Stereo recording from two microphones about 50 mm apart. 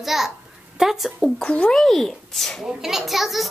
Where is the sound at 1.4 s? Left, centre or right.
Left.